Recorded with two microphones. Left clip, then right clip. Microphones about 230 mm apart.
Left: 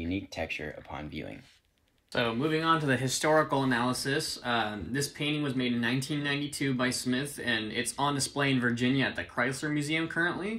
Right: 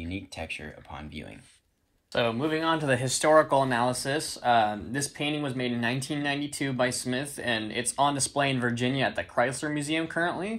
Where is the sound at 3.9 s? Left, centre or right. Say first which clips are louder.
Right 1 dB; right.